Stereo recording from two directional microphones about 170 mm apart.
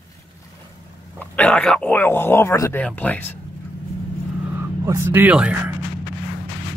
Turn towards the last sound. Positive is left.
turn(degrees=-5)  # may be behind; listen again after turning